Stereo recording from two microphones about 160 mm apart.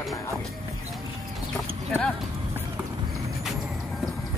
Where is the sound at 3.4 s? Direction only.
Centre (ahead or behind).